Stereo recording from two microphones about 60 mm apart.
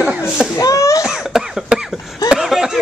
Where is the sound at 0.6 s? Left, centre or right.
Left.